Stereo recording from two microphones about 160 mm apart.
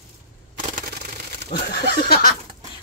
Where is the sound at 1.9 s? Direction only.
70° left (ahead or behind).